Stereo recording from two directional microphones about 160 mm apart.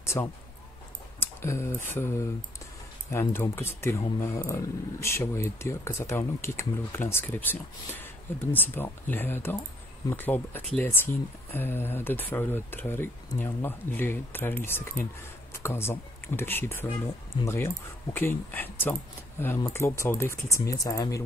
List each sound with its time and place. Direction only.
0.0 s speech: 15° left (ahead or behind)
1.2 s a sound: 15° left (ahead or behind)
2.0 s speech: 15° left (ahead or behind)